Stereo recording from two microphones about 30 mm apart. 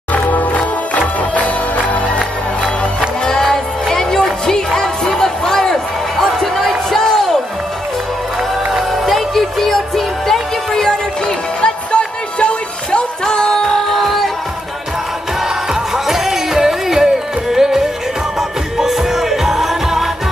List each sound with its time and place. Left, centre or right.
0.1 s music: left
0.9 s music: left
2.1 s music: right
3.3 s music: centre
9.0 s music: centre
11.2 s music: left
13.2 s music: left; by 14.3 s centre
15.7 s music: centre